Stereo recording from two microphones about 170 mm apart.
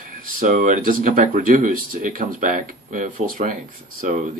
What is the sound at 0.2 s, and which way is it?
Speech, 50° right (ahead or behind).